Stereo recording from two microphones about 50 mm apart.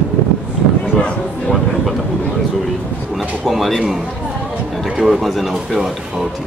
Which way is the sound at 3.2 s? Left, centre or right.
Centre.